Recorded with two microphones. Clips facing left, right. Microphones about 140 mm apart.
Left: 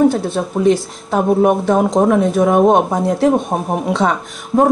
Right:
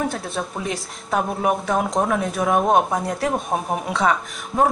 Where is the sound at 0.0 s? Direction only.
Centre (ahead or behind).